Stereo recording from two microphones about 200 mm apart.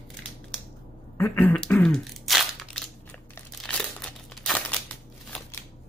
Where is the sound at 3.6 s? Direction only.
5° left (ahead or behind).